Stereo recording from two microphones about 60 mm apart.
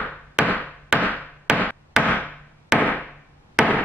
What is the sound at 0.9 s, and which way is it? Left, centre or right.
Hammer, centre.